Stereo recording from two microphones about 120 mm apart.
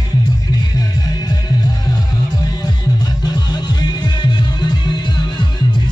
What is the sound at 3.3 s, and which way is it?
Music, 35° left (ahead or behind).